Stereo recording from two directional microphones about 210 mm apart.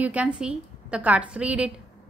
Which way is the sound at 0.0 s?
5° right (ahead or behind).